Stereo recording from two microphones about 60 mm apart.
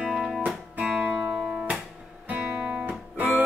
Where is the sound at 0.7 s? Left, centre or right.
Centre.